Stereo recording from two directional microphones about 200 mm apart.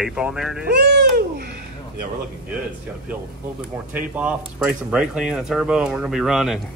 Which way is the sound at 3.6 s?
5° right (ahead or behind).